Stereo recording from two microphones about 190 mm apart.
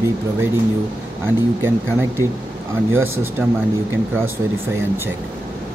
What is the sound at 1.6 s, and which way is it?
Speech, 10° right (ahead or behind).